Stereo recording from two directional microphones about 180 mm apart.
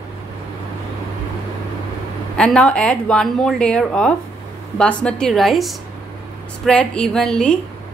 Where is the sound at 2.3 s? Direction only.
5° left (ahead or behind).